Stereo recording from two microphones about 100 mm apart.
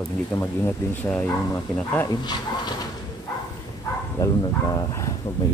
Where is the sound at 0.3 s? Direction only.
25° left (ahead or behind).